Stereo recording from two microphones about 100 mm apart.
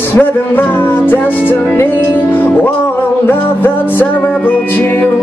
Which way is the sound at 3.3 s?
20° left (ahead or behind).